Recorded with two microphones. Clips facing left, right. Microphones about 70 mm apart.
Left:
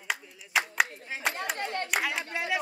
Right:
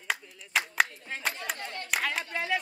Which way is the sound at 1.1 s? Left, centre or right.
Centre.